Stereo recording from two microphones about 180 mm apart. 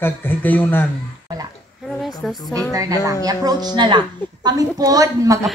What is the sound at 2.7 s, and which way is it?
A woman's voice, 20° right (ahead or behind).